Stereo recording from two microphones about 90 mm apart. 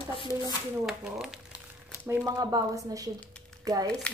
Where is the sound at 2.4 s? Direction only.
45° right (ahead or behind).